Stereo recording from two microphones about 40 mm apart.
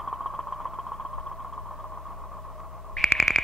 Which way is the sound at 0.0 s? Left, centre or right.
Centre.